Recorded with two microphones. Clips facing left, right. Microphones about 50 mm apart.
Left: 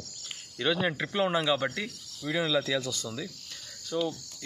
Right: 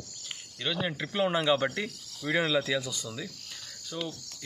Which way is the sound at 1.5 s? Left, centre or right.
Right.